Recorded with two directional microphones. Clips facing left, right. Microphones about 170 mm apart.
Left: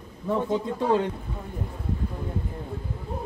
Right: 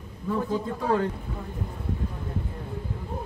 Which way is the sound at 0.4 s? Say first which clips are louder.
Left 2 dB; 20° left (ahead or behind).